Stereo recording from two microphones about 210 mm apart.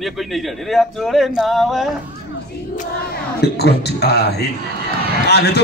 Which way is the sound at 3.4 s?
50° left (ahead or behind).